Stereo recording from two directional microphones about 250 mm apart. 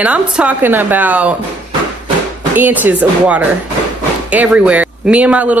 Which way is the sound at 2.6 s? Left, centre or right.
Centre.